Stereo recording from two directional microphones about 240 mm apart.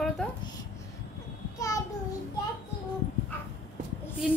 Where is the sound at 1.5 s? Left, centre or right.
Centre.